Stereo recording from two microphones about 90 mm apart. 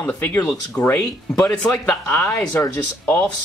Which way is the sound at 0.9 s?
10° left (ahead or behind).